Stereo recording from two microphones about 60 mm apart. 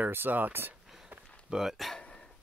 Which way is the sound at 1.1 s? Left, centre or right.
Right.